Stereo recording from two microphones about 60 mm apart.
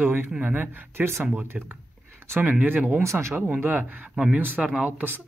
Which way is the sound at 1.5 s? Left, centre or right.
Centre.